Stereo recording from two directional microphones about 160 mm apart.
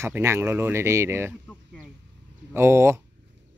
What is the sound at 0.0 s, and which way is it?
Speech, 15° right (ahead or behind).